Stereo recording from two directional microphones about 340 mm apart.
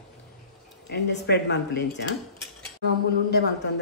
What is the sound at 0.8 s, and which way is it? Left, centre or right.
A woman's voice, left.